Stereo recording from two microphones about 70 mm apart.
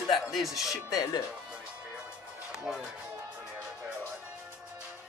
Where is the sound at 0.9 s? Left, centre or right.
Left.